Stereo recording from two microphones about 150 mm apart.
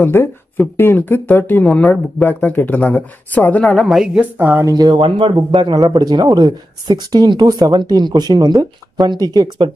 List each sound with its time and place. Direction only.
0.0 s speech: 15° left (ahead or behind)
3.6 s speech: centre (ahead or behind)
4.6 s speech: 25° right (ahead or behind)